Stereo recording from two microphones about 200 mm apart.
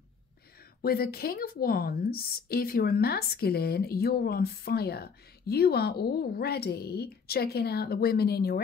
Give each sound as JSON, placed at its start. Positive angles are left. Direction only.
{"t": 0.8, "sound": "a woman's voice", "side_deg": 50}